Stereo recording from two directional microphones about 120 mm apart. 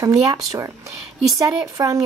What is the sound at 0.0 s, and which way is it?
Speech, 30° right (ahead or behind).